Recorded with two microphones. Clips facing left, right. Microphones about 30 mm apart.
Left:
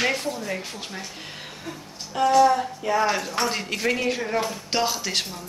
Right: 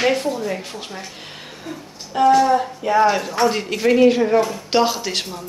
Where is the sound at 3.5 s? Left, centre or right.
Centre.